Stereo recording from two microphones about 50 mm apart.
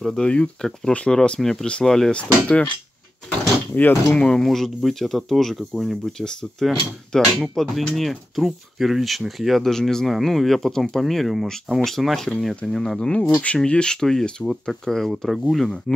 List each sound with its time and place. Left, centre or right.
0.0 s speech: centre
0.9 s cutlery: centre
1.4 s speech: centre
2.1 s cutlery: left
3.7 s speech: left
4.2 s speech: centre
4.5 s speech: centre
9.6 s speech: centre
13.3 s cutlery: left
13.7 s speech: centre